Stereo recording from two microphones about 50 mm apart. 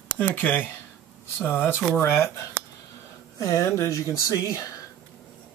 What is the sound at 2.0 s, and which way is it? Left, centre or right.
Speech, left.